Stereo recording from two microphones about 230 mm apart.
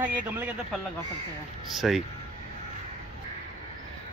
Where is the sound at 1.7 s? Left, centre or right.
Centre.